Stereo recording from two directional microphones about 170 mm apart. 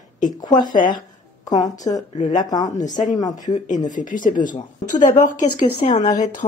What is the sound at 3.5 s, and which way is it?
Speech, 45° left (ahead or behind).